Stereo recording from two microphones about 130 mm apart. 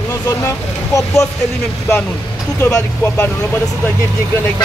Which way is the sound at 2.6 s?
25° left (ahead or behind).